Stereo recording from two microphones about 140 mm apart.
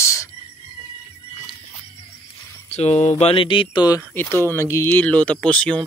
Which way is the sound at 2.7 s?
50° left (ahead or behind).